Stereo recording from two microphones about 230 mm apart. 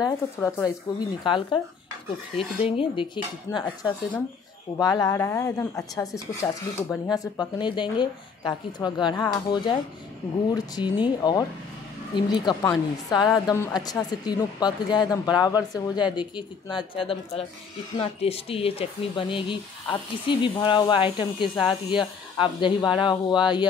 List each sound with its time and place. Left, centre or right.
0.4 s a woman's voice: centre